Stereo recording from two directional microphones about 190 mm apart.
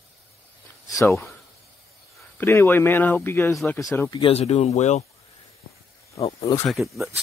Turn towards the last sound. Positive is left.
turn(degrees=0)  # may be behind; listen again after turning